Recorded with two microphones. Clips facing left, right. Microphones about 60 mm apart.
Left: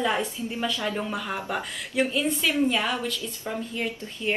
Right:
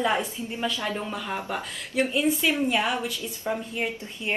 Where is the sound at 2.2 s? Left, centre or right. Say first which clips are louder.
Even; right.